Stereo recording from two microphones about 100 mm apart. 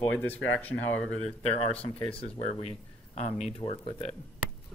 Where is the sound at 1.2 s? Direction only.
85° left.